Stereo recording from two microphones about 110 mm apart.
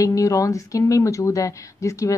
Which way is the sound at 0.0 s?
30° left (ahead or behind).